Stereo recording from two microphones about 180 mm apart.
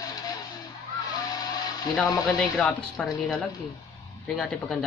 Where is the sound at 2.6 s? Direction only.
5° left (ahead or behind).